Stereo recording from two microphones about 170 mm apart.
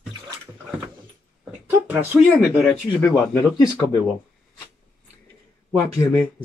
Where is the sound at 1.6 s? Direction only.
15° right (ahead or behind).